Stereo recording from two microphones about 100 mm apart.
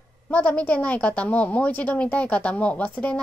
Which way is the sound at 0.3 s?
15° left (ahead or behind).